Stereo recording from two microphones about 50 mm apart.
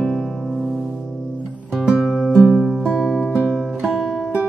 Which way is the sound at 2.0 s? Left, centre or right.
Centre.